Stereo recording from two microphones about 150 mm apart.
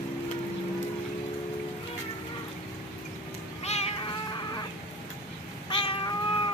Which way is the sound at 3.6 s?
45° left (ahead or behind).